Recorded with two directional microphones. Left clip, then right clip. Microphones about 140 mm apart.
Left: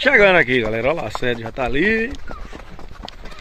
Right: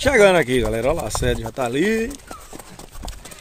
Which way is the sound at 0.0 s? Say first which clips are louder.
Left 2 dB; 15° right (ahead or behind).